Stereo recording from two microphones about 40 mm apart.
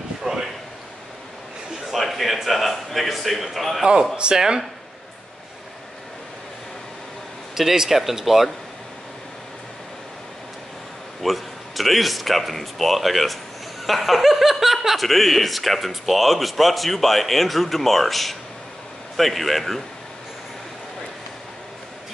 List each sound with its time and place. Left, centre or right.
0.2 s a sound: centre
1.9 s speech: centre
3.8 s speech: centre
7.5 s speech: centre
11.2 s speech: centre